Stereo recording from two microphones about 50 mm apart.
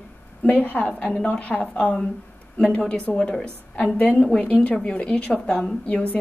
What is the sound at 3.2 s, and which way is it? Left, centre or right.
Speech, left.